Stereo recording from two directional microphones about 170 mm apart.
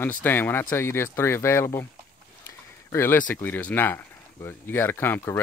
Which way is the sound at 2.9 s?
15° left (ahead or behind).